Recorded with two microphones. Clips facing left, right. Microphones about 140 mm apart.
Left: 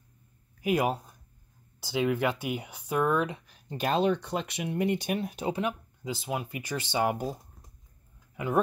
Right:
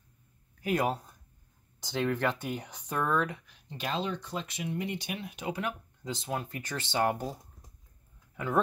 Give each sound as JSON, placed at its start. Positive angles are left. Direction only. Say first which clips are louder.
{"t": 0.6, "sound": "speech", "louder": "left 3 dB", "side_deg": 10}
{"t": 3.4, "sound": "speech", "louder": "left 6 dB", "side_deg": 45}
{"t": 6.0, "sound": "speech", "louder": "left 2 dB", "side_deg": 10}